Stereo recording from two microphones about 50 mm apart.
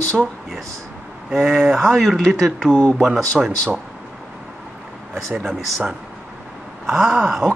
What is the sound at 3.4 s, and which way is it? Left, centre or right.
Speech, centre.